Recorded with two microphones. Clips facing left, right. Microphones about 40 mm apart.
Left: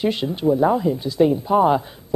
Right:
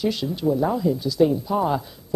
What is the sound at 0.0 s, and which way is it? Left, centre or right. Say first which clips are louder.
A woman's voice: left 3 dB; left.